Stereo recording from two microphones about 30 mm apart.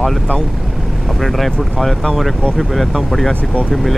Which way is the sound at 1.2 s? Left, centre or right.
Centre.